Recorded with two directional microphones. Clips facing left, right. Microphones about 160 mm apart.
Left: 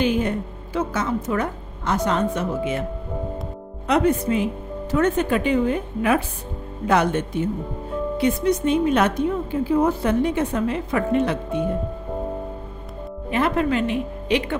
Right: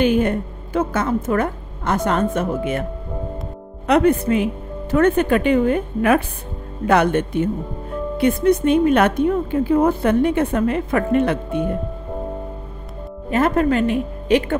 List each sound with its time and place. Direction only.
0.0 s a woman's voice: 55° right (ahead or behind)
3.8 s a woman's voice: 60° right (ahead or behind)
13.3 s speech: 45° right (ahead or behind)